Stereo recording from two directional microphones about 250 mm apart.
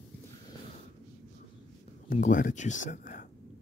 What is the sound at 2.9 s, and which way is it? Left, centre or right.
Whispering, left.